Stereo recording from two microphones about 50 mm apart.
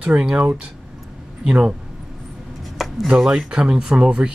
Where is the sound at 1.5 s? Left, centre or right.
Right.